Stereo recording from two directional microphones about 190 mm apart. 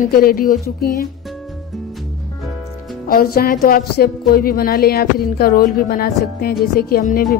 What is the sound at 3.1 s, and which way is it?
Speech, 50° left (ahead or behind).